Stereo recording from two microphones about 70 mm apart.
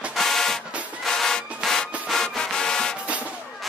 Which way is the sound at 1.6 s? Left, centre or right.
Centre.